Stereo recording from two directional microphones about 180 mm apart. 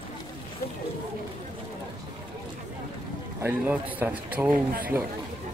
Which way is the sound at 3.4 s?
10° right (ahead or behind).